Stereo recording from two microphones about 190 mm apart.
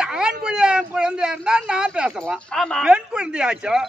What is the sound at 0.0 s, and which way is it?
A man's voice, 5° right (ahead or behind).